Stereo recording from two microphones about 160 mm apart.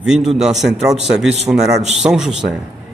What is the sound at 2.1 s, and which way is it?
Speech, 5° right (ahead or behind).